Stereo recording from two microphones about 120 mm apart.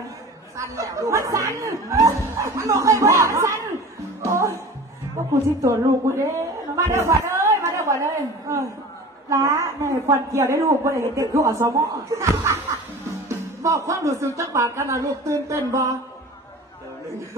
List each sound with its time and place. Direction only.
0.6 s a woman's voice: 25° right (ahead or behind)
4.2 s music: 25° right (ahead or behind)
5.6 s a woman's voice: 25° right (ahead or behind)
13.6 s a woman's voice: 25° right (ahead or behind)